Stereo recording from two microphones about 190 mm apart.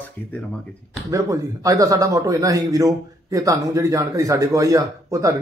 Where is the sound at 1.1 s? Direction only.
15° right (ahead or behind).